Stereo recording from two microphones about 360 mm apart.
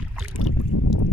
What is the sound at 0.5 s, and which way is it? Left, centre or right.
Boat, left.